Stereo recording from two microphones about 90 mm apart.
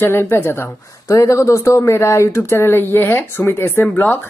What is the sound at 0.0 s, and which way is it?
Speech, 25° left (ahead or behind).